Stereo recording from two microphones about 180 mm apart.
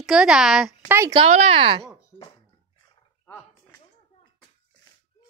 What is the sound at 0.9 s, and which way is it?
Speech, 15° right (ahead or behind).